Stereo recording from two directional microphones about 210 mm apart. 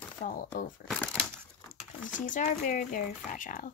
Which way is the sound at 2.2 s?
35° left (ahead or behind).